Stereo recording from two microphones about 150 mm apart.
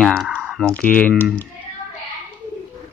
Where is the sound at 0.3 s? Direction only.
5° right (ahead or behind).